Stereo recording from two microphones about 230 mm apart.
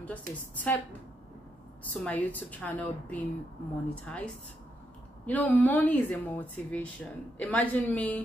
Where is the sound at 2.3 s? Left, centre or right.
Centre.